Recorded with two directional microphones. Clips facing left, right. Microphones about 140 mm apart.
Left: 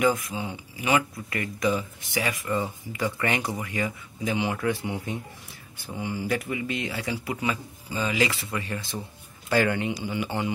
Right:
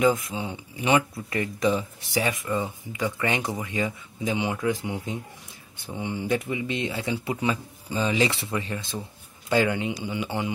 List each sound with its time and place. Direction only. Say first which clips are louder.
0.0 s speech: right 2 dB; 25° right (ahead or behind)
2.5 s speech: even; 15° right (ahead or behind)
8.5 s speech: right 2 dB; 15° right (ahead or behind)